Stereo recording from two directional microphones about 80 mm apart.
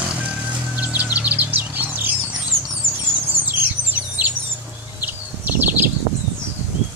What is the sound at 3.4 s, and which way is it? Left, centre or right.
Bird, right.